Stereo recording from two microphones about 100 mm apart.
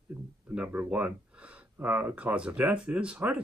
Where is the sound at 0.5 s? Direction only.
15° right (ahead or behind).